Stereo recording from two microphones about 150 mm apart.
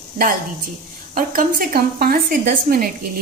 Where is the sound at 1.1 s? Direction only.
65° right (ahead or behind).